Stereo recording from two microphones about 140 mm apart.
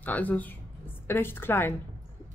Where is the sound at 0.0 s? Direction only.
10° left (ahead or behind).